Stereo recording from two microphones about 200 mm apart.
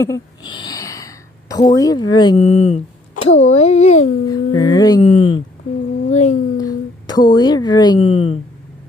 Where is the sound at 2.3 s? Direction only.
35° left (ahead or behind).